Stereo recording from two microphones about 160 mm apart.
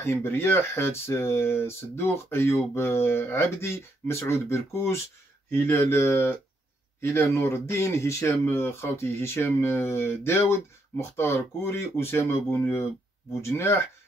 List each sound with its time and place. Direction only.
0.0 s speech: 15° left (ahead or behind)